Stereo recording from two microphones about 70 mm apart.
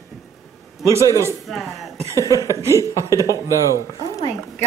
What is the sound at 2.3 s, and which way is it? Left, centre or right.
Speech, right.